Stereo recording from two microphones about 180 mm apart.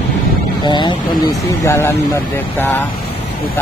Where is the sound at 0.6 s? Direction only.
25° left (ahead or behind).